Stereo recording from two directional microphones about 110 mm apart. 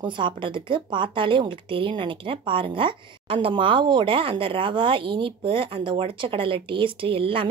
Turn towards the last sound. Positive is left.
turn(degrees=-55)  # may be behind; listen again after turning